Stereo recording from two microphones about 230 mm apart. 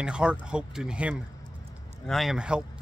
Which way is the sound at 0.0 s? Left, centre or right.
Centre.